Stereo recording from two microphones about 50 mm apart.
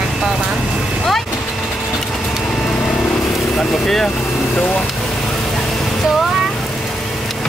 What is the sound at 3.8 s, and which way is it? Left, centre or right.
Speech, centre.